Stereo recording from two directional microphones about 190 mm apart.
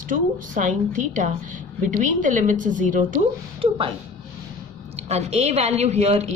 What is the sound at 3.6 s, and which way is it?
Speech, 30° right (ahead or behind).